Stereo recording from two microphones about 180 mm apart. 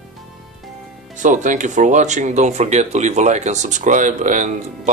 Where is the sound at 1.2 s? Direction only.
45° right (ahead or behind).